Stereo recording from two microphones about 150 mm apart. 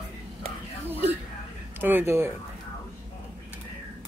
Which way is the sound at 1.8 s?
15° right (ahead or behind).